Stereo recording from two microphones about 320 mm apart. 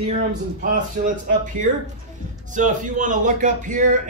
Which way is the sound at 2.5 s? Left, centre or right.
Right.